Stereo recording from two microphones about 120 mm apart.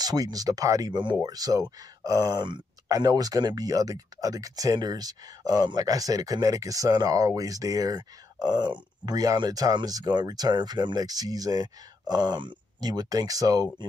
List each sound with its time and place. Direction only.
0.0 s speech: 30° right (ahead or behind)